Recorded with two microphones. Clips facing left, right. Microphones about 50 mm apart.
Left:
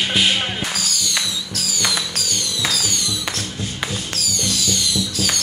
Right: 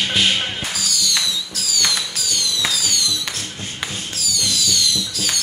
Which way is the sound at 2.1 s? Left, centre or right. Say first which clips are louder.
Left 1 dB; left.